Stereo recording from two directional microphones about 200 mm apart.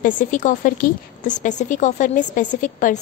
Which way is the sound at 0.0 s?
40° left (ahead or behind).